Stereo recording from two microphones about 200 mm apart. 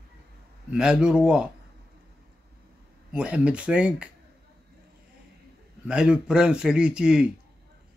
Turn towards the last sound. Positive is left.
turn(degrees=-5)  # may be behind; listen again after turning